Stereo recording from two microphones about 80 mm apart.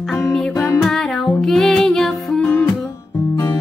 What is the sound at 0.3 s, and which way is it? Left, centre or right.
Music, centre.